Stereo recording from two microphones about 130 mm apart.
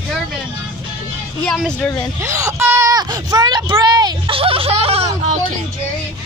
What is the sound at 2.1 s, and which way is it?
Speech, 25° right (ahead or behind).